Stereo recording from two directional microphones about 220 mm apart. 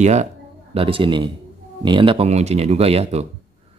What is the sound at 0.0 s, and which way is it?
Speech, 30° right (ahead or behind).